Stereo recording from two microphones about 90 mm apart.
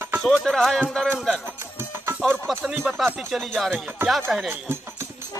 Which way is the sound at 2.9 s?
Centre (ahead or behind).